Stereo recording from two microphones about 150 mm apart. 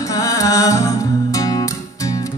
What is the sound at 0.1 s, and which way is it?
Music, 20° left (ahead or behind).